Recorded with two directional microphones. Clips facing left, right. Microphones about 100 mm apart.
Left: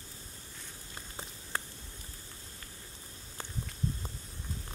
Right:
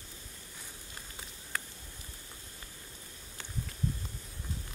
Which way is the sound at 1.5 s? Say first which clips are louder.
Left 1 dB; 25° left (ahead or behind).